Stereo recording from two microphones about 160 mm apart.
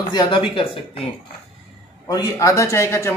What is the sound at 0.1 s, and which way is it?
Speech, 30° left (ahead or behind).